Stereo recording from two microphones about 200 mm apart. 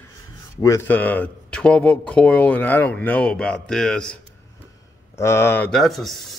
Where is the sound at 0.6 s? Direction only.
15° left (ahead or behind).